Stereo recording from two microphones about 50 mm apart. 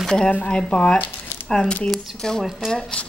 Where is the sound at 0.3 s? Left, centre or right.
Left.